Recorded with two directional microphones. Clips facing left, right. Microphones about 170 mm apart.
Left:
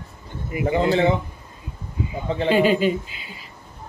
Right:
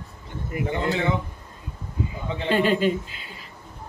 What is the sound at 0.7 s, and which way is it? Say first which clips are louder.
Speech: left 7 dB; 35° left (ahead or behind).